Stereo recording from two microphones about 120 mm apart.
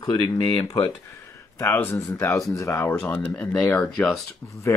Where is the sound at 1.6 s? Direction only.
20° left (ahead or behind).